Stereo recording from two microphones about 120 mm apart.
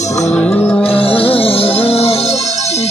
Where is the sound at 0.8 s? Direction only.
50° left (ahead or behind).